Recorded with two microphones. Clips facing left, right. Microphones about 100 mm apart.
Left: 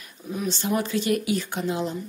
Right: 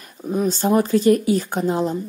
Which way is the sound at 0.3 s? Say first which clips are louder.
Right 8 dB; 40° right (ahead or behind).